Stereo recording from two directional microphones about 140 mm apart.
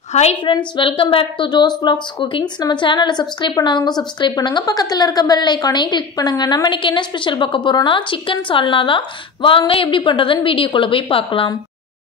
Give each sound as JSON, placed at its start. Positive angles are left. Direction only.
{"t": 0.1, "sound": "a woman's voice", "side_deg": 50}